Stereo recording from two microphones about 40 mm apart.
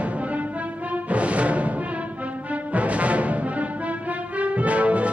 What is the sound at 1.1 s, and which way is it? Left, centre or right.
Music, right.